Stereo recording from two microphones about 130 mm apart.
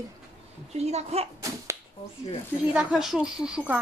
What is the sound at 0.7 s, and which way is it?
Speech, 55° right (ahead or behind).